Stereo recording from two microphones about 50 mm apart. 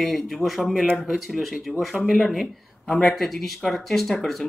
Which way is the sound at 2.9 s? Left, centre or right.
Centre.